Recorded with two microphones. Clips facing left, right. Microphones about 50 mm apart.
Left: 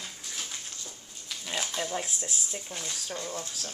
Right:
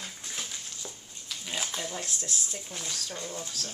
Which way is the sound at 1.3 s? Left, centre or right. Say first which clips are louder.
Left 1 dB; centre.